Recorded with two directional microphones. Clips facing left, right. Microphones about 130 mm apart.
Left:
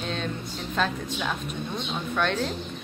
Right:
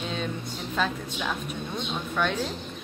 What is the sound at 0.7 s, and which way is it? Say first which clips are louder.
A woman's voice: left 1 dB; 5° right (ahead or behind).